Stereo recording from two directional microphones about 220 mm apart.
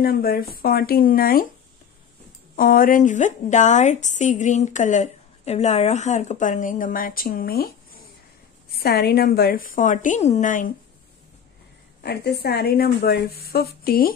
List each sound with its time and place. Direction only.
0.0 s a woman's voice: 45° left (ahead or behind)
2.5 s a woman's voice: 40° left (ahead or behind)
8.7 s a woman's voice: 45° left (ahead or behind)
12.0 s a woman's voice: 45° left (ahead or behind)